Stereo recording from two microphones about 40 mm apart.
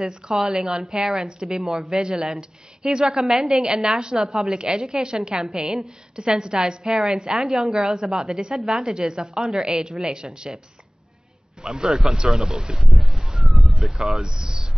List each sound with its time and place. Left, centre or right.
0.5 s a woman's voice: centre
11.6 s a woman's voice: centre
12.3 s a sound: centre
13.9 s speech: centre